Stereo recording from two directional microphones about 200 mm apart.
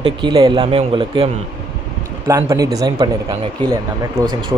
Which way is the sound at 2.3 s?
15° right (ahead or behind).